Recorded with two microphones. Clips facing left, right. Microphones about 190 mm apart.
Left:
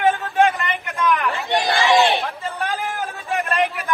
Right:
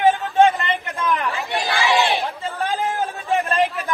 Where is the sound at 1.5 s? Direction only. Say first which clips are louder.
Left 4 dB; 15° left (ahead or behind).